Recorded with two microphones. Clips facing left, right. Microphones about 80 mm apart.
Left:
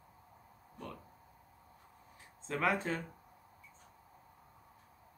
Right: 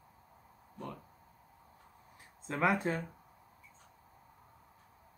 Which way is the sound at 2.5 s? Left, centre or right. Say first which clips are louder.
Right 2 dB; centre.